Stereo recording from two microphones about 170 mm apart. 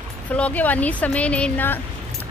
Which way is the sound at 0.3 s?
10° left (ahead or behind).